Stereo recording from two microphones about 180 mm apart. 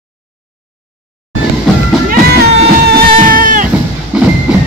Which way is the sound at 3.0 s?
50° right (ahead or behind).